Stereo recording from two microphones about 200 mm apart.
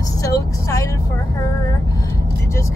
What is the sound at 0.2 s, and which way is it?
Vehicle, 15° left (ahead or behind).